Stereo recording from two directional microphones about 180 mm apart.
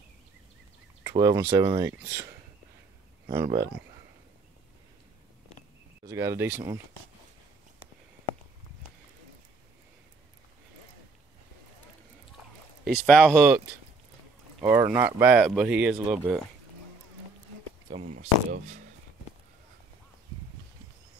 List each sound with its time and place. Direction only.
1.0 s speech: 20° right (ahead or behind)
6.0 s speech: 15° right (ahead or behind)
13.0 s speech: centre (ahead or behind)
14.6 s speech: 15° right (ahead or behind)
18.1 s speech: 45° right (ahead or behind)